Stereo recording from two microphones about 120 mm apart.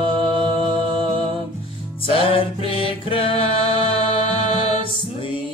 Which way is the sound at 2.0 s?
50° left (ahead or behind).